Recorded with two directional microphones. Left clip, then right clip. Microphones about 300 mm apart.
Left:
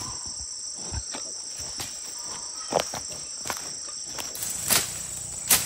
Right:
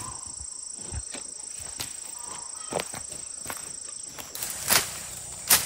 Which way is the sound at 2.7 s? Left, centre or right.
Centre.